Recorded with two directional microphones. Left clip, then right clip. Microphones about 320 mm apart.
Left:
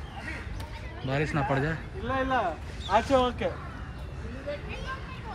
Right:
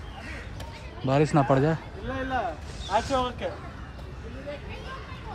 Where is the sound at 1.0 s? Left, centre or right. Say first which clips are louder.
Right 6 dB; centre.